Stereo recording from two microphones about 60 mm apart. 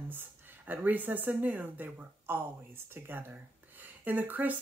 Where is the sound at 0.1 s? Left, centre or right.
Right.